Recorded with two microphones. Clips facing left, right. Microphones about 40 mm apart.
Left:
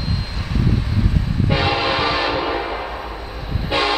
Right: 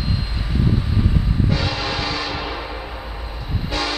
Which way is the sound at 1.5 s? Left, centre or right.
Left.